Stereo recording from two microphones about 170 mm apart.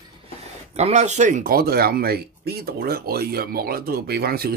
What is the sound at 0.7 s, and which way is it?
Speech, 40° right (ahead or behind).